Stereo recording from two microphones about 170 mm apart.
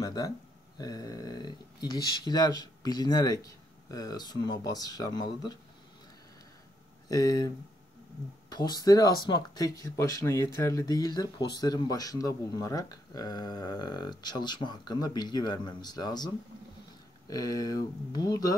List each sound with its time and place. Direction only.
0.0 s speech: 20° left (ahead or behind)
7.1 s speech: 20° left (ahead or behind)
17.3 s speech: 20° left (ahead or behind)